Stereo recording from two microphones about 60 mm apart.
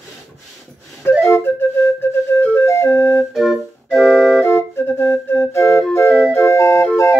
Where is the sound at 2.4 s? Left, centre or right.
Left.